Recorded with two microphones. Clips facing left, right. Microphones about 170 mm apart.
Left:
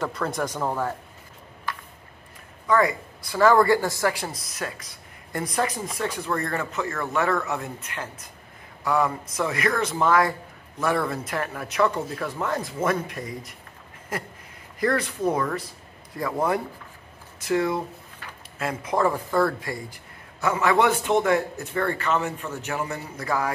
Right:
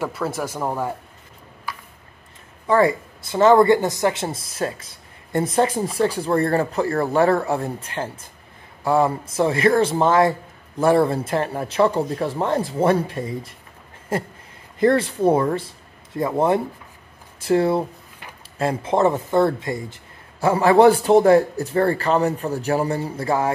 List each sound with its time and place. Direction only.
0.0 s speech: 5° right (ahead or behind)
2.6 s speech: 30° right (ahead or behind)